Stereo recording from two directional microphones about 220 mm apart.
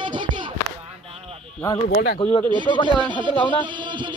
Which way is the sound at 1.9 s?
45° left (ahead or behind).